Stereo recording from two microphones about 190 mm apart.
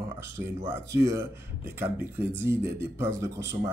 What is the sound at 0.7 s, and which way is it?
Speech, 15° right (ahead or behind).